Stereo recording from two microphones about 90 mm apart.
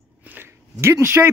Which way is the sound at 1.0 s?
25° right (ahead or behind).